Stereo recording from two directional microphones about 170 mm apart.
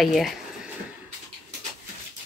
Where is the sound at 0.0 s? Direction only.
Centre (ahead or behind).